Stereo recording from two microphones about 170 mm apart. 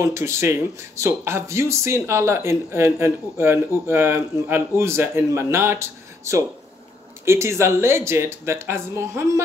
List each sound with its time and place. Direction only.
0.0 s speech: 15° right (ahead or behind)